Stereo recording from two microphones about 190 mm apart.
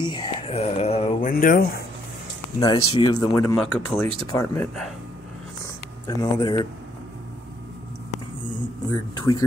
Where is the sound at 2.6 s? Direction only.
25° left (ahead or behind).